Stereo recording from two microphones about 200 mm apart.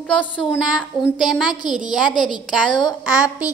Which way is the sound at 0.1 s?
5° left (ahead or behind).